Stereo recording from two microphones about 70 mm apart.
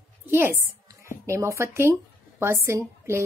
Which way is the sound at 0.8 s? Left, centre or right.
Right.